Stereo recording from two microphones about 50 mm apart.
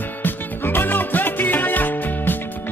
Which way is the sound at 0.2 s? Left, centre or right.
Left.